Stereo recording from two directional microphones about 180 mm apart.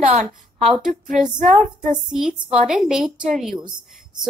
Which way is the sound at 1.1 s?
45° right (ahead or behind).